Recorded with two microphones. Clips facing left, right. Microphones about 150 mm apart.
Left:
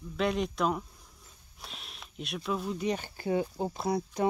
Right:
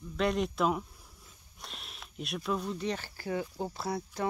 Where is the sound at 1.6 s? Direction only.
Centre (ahead or behind); by 4.3 s 20° left (ahead or behind).